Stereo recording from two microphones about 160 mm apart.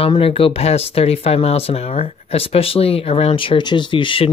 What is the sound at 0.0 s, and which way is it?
Speech, 35° left (ahead or behind).